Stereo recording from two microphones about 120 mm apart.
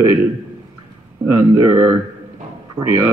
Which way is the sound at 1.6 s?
20° right (ahead or behind).